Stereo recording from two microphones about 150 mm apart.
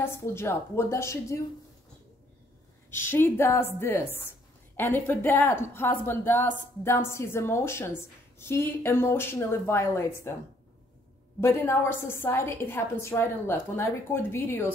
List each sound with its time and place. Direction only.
0.0 s a woman's voice: 15° left (ahead or behind)
2.9 s a woman's voice: 15° left (ahead or behind)
11.4 s a woman's voice: 15° left (ahead or behind)